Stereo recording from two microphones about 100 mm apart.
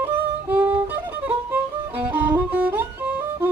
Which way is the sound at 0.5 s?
20° right (ahead or behind).